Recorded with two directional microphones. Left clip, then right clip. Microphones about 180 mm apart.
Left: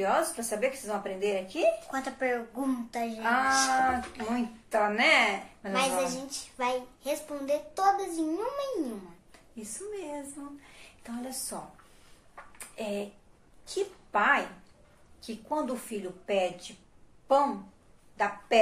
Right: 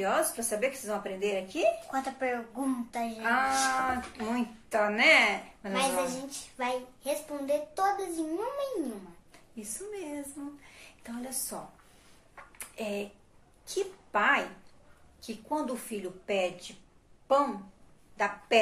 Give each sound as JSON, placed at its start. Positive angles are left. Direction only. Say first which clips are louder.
{"t": 0.4, "sound": "speech", "louder": "left 1 dB", "side_deg": 0}
{"t": 1.9, "sound": "a woman's voice", "louder": "left 1 dB", "side_deg": 20}
{"t": 3.2, "sound": "speech", "louder": "left 2 dB", "side_deg": 0}
{"t": 5.7, "sound": "a child's voice", "louder": "left 1 dB", "side_deg": 15}
{"t": 9.7, "sound": "a woman's voice", "louder": "left 1 dB", "side_deg": -10}
{"t": 12.4, "sound": "a sound", "louder": "left 1 dB", "side_deg": -5}
{"t": 13.7, "sound": "a woman's voice", "louder": "left 1 dB", "side_deg": 0}